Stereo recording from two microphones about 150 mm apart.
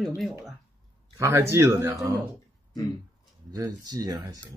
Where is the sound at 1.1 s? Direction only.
20° right (ahead or behind).